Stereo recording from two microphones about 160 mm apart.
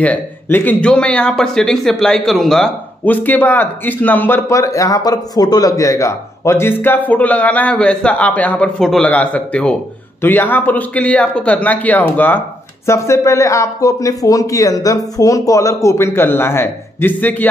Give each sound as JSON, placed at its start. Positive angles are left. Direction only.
{"t": 0.0, "sound": "speech", "side_deg": 10}